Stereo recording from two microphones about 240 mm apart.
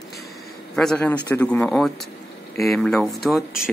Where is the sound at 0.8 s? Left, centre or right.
Centre.